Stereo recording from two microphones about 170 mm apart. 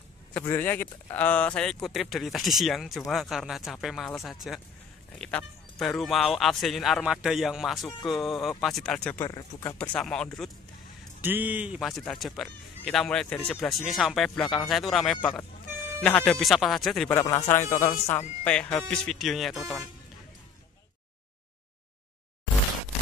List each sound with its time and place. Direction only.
0.3 s speech: 10° left (ahead or behind)
9.8 s speech: 5° left (ahead or behind)
11.1 s speech: 10° right (ahead or behind)
17.1 s speech: 20° left (ahead or behind)
18.4 s speech: 5° left (ahead or behind)